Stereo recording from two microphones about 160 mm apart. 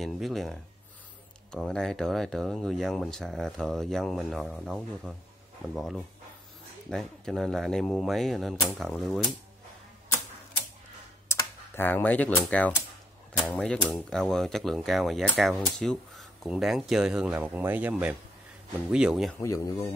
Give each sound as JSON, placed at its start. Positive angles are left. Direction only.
{"t": 0.0, "sound": "speech", "side_deg": 0}
{"t": 6.9, "sound": "speech", "side_deg": 0}
{"t": 11.2, "sound": "speech", "side_deg": 15}
{"t": 19.4, "sound": "speech", "side_deg": 20}